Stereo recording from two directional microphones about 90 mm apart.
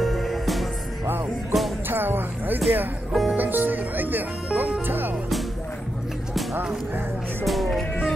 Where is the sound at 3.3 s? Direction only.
20° right (ahead or behind).